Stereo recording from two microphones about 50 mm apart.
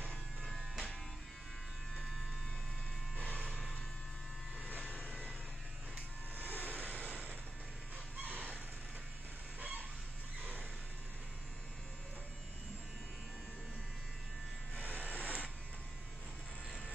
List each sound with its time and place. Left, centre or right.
0.4 s electric shaver: centre
6.3 s vehicle: right
6.9 s vehicle: left
8.2 s a sound: right
9.6 s fowl: right
14.8 s a sound: right